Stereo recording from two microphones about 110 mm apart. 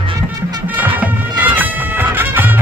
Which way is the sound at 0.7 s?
15° right (ahead or behind).